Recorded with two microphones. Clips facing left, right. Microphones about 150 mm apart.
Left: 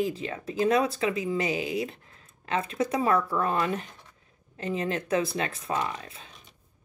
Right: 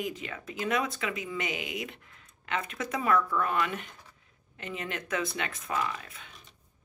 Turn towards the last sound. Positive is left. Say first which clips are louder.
# left 2 dB
turn(degrees=30)  # may be behind; listen again after turning